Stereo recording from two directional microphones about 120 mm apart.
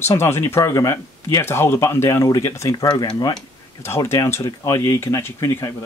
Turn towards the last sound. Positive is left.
turn(degrees=25)  # may be behind; listen again after turning